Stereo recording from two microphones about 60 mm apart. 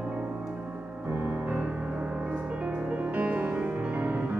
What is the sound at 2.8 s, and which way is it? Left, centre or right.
Music, right.